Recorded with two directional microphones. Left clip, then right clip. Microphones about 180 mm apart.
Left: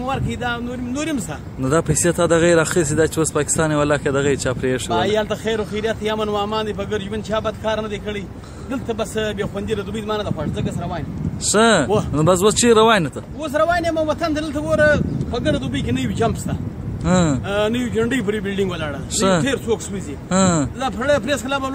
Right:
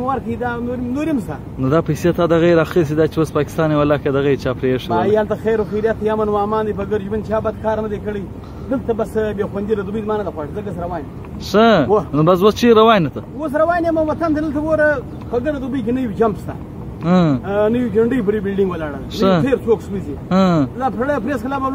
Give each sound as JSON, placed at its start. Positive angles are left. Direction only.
{"t": 0.1, "sound": "a man's voice", "side_deg": 25}
{"t": 1.6, "sound": "speech", "side_deg": 0}
{"t": 4.9, "sound": "a man's voice", "side_deg": 25}
{"t": 11.5, "sound": "speech", "side_deg": 0}
{"t": 13.6, "sound": "a man's voice", "side_deg": 20}
{"t": 14.9, "sound": "a man's voice", "side_deg": 25}
{"t": 17.0, "sound": "speech", "side_deg": 5}
{"t": 17.5, "sound": "a man's voice", "side_deg": 25}
{"t": 19.1, "sound": "speech", "side_deg": 0}
{"t": 19.4, "sound": "a man's voice", "side_deg": 20}
{"t": 20.2, "sound": "speech", "side_deg": 0}
{"t": 20.8, "sound": "speech", "side_deg": 35}